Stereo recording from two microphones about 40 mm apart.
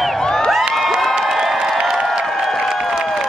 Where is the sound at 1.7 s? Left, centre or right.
Centre.